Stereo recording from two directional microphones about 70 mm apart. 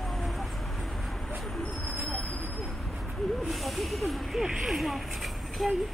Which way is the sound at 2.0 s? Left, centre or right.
Left.